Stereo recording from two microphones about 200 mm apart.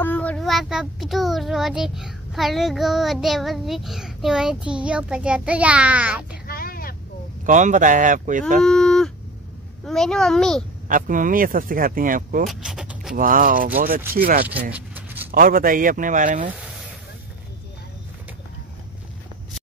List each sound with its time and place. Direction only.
0.0 s a child's voice: 5° left (ahead or behind)
6.4 s vehicle: 50° left (ahead or behind)
7.4 s speech: 40° right (ahead or behind)
8.6 s a sound: 5° left (ahead or behind)
9.8 s a child's voice: centre (ahead or behind)
10.9 s speech: 40° right (ahead or behind)
12.4 s vehicle: centre (ahead or behind)
13.1 s speech: 45° right (ahead or behind)
14.5 s a sound: 10° right (ahead or behind)
15.3 s speech: 45° right (ahead or behind)
16.5 s a sound: 5° right (ahead or behind)